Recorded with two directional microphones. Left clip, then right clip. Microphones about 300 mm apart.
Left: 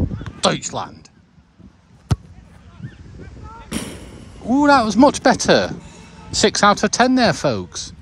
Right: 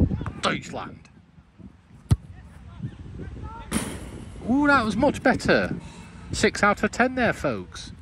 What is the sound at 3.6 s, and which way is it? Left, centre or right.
Artillery fire, centre.